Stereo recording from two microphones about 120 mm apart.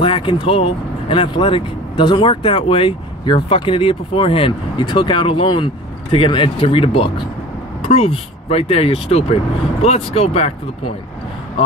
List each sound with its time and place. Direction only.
0.0 s speech: 45° left (ahead or behind)